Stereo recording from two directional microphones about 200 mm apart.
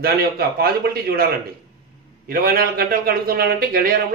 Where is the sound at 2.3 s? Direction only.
45° right (ahead or behind).